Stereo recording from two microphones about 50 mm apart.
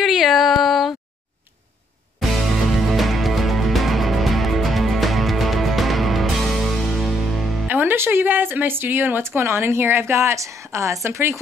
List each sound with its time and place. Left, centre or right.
0.0 s a sound: centre
2.2 s music: centre
7.6 s music: right
7.9 s speech: right
9.2 s a woman's voice: right